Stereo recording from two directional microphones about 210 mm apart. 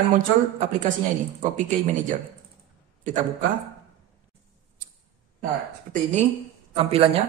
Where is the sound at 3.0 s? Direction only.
35° right (ahead or behind).